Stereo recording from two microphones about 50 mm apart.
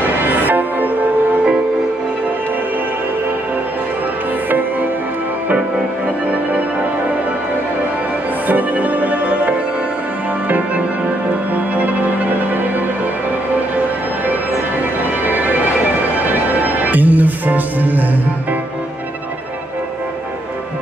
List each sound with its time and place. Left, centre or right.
0.3 s music: right
8.5 s music: right
11.7 s music: right
16.6 s music: right